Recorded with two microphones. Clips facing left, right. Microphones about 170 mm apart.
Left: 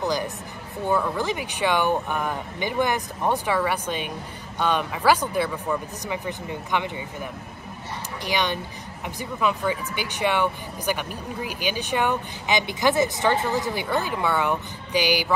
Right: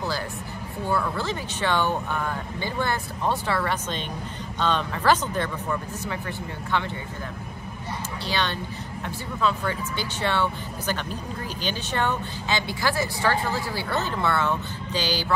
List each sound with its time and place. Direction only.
0.0 s speech: 15° left (ahead or behind)
8.3 s speech: 15° left (ahead or behind)